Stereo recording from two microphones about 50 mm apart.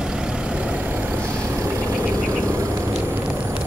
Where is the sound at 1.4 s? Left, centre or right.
Right.